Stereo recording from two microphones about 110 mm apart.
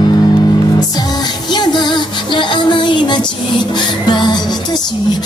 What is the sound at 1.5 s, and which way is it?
Music, 40° left (ahead or behind).